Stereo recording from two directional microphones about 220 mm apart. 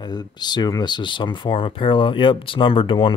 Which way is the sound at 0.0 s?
20° left (ahead or behind).